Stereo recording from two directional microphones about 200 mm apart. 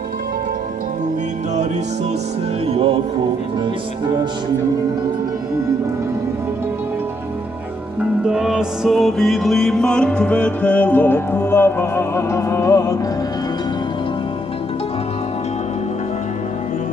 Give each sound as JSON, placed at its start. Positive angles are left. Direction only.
{"t": 2.6, "sound": "music", "side_deg": -30}
{"t": 8.0, "sound": "music", "side_deg": -5}